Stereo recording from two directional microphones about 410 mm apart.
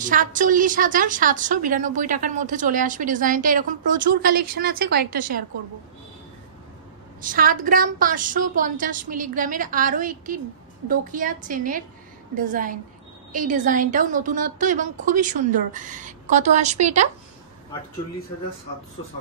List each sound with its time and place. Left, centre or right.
0.0 s a woman's voice: centre
7.2 s a woman's voice: centre